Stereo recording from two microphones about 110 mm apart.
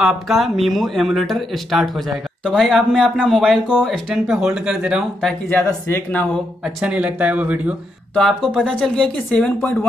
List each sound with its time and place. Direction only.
0.0 s speech: centre (ahead or behind)
5.7 s speech: 20° left (ahead or behind)
6.6 s speech: 10° right (ahead or behind)
8.1 s speech: 5° left (ahead or behind)